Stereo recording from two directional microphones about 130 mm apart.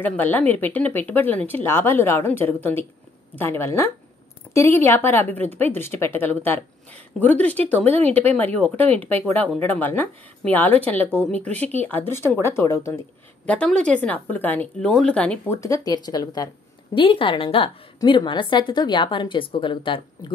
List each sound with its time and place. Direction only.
0.0 s a woman's voice: 15° left (ahead or behind)
11.4 s speech: 55° right (ahead or behind)
11.7 s a woman's voice: 15° left (ahead or behind)
13.5 s speech: 10° left (ahead or behind); by 16.4 s 30° left (ahead or behind)
16.9 s a woman's voice: 40° left (ahead or behind)